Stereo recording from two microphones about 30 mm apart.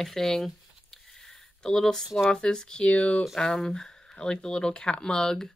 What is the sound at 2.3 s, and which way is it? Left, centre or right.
Speech, left.